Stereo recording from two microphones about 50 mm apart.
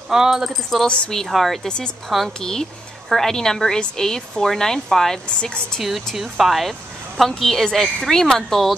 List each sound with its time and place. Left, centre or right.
0.1 s speech: centre
0.8 s speech: left
1.1 s a woman's voice: centre
2.2 s a woman's voice: centre
5.8 s a woman's voice: centre
7.2 s a woman's voice: centre